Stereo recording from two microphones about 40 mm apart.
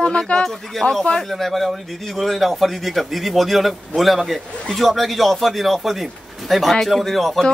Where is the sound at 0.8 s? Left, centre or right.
Centre.